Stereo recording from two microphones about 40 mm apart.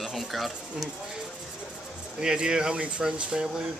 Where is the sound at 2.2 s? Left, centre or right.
Centre.